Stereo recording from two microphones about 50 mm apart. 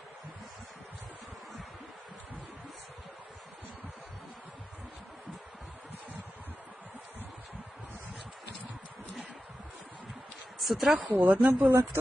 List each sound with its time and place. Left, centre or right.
10.6 s a woman's voice: centre
11.0 s a woman's voice: right
11.7 s speech: right